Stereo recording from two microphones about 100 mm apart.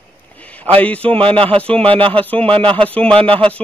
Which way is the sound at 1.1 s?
65° right (ahead or behind).